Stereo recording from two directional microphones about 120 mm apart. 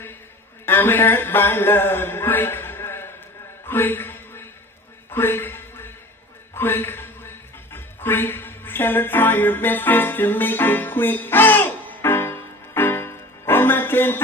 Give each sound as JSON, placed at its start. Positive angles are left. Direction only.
{"t": 0.7, "sound": "speech", "side_deg": 20}
{"t": 3.6, "sound": "a sound", "side_deg": 20}
{"t": 6.5, "sound": "a man's voice", "side_deg": 20}
{"t": 11.9, "sound": "music", "side_deg": 20}